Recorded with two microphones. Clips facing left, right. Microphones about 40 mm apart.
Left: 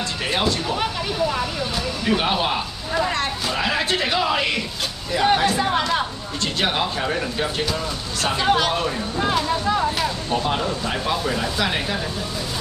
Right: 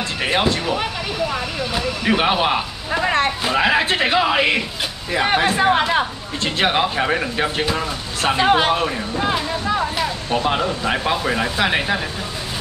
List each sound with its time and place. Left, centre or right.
0.2 s speech: right
1.8 s speech: right
9.2 s speech: centre
10.3 s speech: right